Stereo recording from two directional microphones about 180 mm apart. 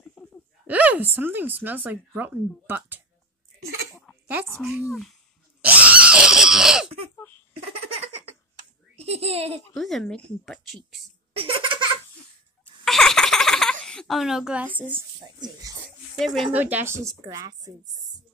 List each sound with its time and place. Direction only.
0.2 s a sound: 5° left (ahead or behind)
0.7 s speech: 10° right (ahead or behind)
4.6 s speech: 10° right (ahead or behind)
5.6 s screaming: 10° right (ahead or behind)
8.9 s a child's voice: 35° right (ahead or behind)
9.8 s a woman's voice: centre (ahead or behind)
11.3 s laughter: 30° right (ahead or behind)
12.8 s a sound: centre (ahead or behind)
13.8 s a woman's voice: 5° left (ahead or behind)
15.2 s speech: 25° right (ahead or behind)
16.5 s speech: 10° right (ahead or behind)